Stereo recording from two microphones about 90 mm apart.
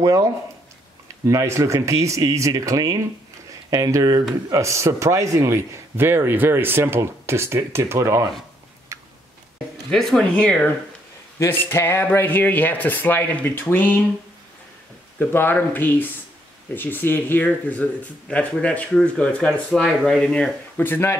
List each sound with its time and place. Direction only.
0.0 s a man's voice: 40° right (ahead or behind)
9.8 s speech: 5° left (ahead or behind)
11.3 s speech: 25° left (ahead or behind)
15.1 s speech: 20° left (ahead or behind)
20.8 s speech: 25° left (ahead or behind)